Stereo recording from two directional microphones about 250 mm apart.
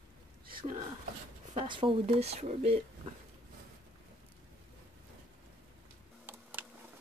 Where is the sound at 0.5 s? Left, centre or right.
Centre.